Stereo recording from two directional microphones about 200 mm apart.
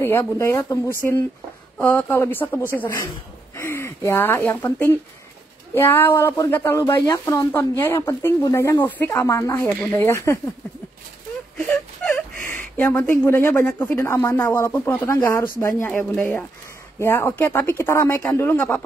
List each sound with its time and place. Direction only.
0.0 s speech: 10° left (ahead or behind)
11.5 s whimper: 5° left (ahead or behind)
12.7 s speech: 5° left (ahead or behind)